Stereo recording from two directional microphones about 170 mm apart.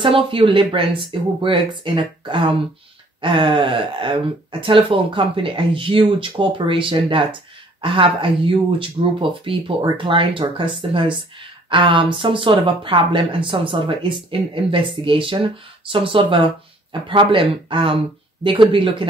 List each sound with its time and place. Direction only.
0.0 s speech: 30° right (ahead or behind)